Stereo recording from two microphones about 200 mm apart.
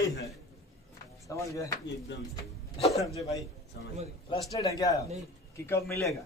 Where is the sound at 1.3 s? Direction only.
15° left (ahead or behind).